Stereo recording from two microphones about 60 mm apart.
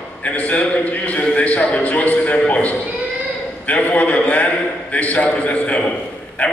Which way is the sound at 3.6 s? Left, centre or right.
Left.